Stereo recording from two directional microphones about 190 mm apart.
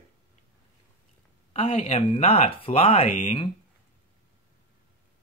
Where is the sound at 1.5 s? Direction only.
30° left (ahead or behind).